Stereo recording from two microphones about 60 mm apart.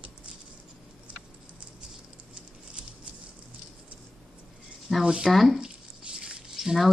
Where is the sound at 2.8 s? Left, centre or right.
Centre.